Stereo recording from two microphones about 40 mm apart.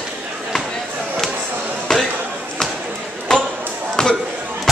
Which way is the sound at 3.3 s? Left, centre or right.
Centre.